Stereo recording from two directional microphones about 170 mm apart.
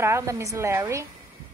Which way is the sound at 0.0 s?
15° right (ahead or behind).